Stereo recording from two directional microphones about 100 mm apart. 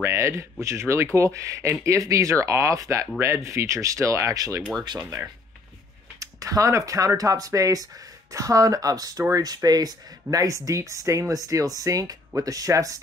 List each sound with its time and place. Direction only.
0.0 s speech: 25° right (ahead or behind)
6.1 s speech: 35° right (ahead or behind)